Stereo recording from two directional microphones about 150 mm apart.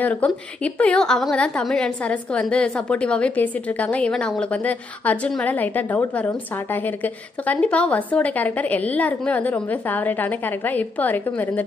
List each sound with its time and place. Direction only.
0.0 s a woman's voice: 10° left (ahead or behind)